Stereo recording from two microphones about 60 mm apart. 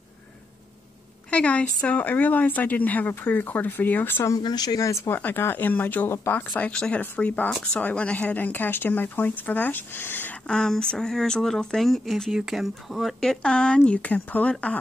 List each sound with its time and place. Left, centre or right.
1.3 s speech: centre
4.2 s speech: left
5.1 s speech: left
6.7 s speech: centre
7.0 s speech: left
10.4 s speech: centre
13.2 s speech: centre